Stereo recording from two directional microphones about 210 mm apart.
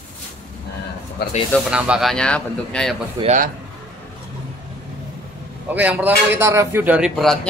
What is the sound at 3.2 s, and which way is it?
Speech, 35° right (ahead or behind).